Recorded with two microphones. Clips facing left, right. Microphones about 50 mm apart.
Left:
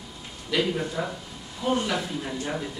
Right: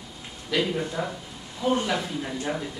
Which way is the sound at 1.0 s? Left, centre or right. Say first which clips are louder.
Even; centre.